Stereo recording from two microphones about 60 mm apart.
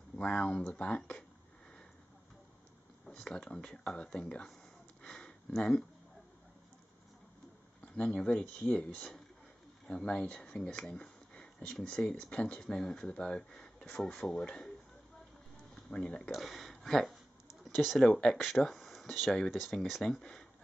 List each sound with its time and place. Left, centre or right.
0.1 s speech: centre
3.1 s speech: centre
5.0 s a sound: centre
7.8 s speech: centre
15.7 s speech: centre
16.3 s speech: centre